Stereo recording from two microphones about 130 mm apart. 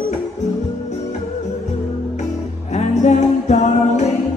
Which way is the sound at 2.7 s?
65° left (ahead or behind).